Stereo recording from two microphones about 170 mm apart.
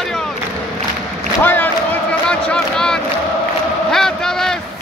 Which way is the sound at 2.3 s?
5° left (ahead or behind).